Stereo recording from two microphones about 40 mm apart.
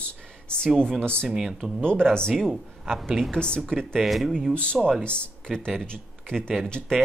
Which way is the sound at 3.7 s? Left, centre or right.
Centre.